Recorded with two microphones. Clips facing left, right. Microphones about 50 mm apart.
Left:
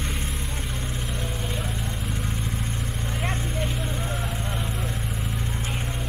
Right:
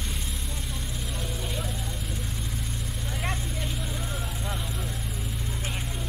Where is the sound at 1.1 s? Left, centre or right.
Centre.